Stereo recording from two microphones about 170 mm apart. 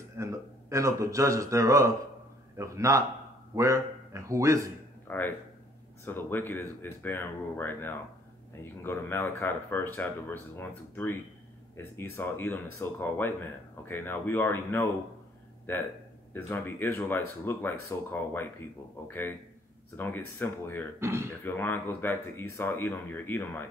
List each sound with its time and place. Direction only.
0.2 s a man's voice: 15° right (ahead or behind)
5.0 s speech: 10° left (ahead or behind)
21.0 s a man's voice: 15° right (ahead or behind)
21.3 s speech: 10° left (ahead or behind)